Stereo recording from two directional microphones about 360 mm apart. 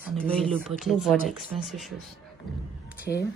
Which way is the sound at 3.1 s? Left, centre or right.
Centre.